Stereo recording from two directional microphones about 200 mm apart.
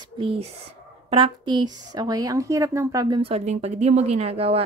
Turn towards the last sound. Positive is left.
turn(degrees=-30)  # may be behind; listen again after turning